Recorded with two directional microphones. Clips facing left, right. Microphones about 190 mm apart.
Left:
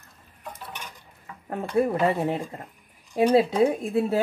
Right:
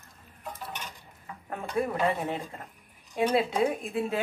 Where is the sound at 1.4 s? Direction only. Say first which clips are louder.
Left 6 dB; 30° left (ahead or behind).